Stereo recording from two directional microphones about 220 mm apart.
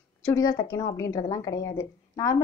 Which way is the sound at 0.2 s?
15° left (ahead or behind).